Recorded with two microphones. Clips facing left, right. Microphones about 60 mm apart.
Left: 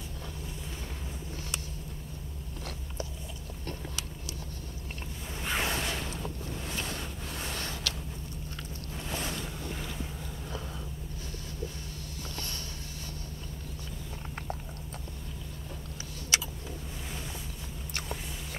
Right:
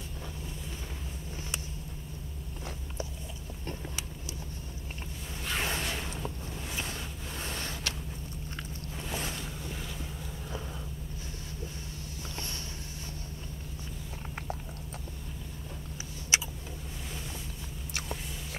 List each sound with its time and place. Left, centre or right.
5.5 s whoosh: centre
7.9 s a sound: right
16.3 s vehicle: right